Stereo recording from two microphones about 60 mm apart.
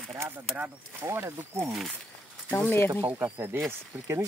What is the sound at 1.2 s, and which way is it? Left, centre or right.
Speech, right.